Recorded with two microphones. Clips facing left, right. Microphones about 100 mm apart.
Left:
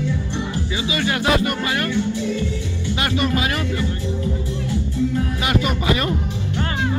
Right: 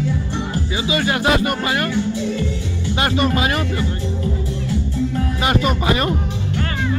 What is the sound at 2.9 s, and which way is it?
Speech, 35° right (ahead or behind).